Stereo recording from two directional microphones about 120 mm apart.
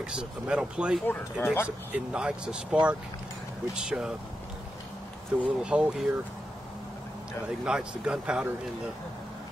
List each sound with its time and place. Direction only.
0.0 s speech: 5° right (ahead or behind)
1.0 s speech: 20° left (ahead or behind)
1.9 s speech: 10° right (ahead or behind)
5.4 s speech: 10° right (ahead or behind)
7.6 s speech: 5° right (ahead or behind)